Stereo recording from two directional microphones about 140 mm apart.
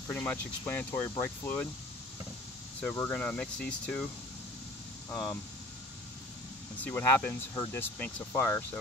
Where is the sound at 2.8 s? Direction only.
10° left (ahead or behind).